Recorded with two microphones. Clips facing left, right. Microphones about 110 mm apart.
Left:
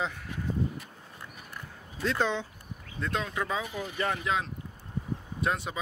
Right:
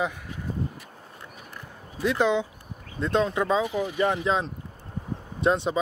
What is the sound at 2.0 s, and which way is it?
Speech, 15° right (ahead or behind).